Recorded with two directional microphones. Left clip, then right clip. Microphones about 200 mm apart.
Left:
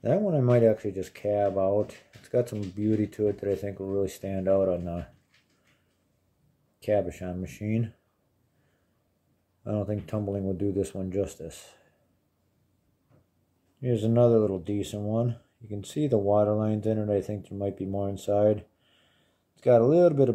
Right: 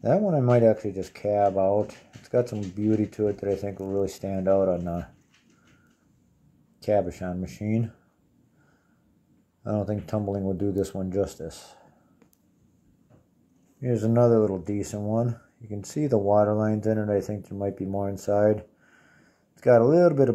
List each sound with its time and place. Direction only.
0.0 s speech: centre (ahead or behind)
6.8 s speech: 5° right (ahead or behind)
9.6 s speech: 5° right (ahead or behind)
13.7 s speech: 5° left (ahead or behind)